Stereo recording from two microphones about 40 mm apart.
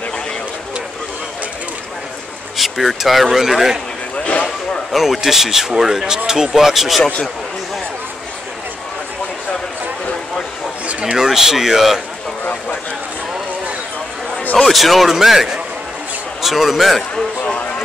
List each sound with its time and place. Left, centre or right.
2.5 s speech: centre
4.9 s speech: centre
10.9 s speech: right
11.1 s speech: centre
14.6 s speech: centre